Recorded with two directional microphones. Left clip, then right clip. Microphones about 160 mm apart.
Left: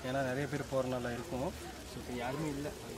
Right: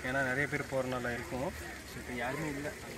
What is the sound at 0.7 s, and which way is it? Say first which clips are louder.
Speech: right 1 dB; 5° left (ahead or behind).